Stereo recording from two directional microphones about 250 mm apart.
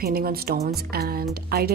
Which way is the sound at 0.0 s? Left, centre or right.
Right.